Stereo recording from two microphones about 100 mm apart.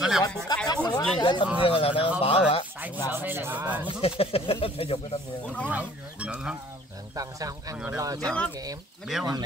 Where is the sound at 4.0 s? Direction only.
75° left (ahead or behind).